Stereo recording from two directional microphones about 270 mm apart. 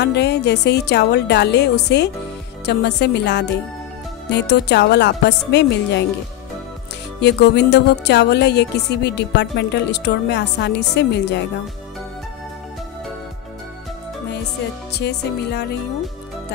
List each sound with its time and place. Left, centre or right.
0.0 s speech: left
7.2 s speech: left
14.9 s speech: left